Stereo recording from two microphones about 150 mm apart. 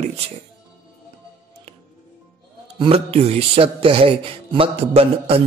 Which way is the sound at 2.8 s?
40° right (ahead or behind).